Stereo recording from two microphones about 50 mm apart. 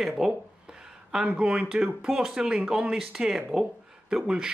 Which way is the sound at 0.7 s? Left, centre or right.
Centre.